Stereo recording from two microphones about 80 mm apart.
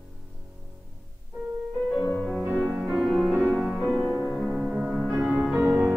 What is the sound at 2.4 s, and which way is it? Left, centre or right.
Music, centre.